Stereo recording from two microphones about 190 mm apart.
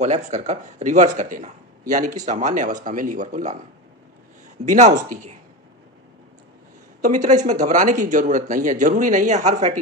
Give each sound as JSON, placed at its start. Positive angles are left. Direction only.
{"t": 0.0, "sound": "speech", "side_deg": -35}
{"t": 4.6, "sound": "speech", "side_deg": -40}
{"t": 7.0, "sound": "speech", "side_deg": -40}